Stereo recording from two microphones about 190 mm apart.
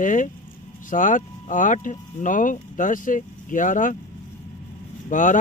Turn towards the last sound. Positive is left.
turn(degrees=40)  # may be behind; listen again after turning